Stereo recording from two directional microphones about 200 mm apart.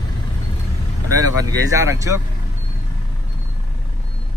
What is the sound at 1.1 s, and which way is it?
Speech, 20° right (ahead or behind).